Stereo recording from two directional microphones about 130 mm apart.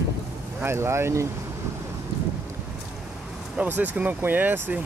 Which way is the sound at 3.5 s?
10° right (ahead or behind).